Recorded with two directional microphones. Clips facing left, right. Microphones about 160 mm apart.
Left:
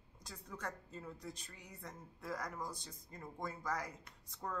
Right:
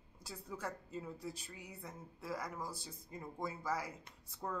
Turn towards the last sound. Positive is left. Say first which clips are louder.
# right 1 dB
turn(degrees=-5)  # may be behind; listen again after turning